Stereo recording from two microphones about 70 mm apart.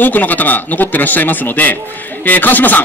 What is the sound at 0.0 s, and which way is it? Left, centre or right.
A man's voice, left.